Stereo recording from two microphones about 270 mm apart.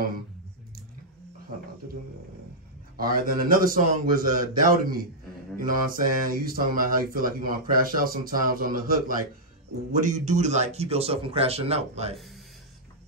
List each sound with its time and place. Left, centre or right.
3.0 s speech: right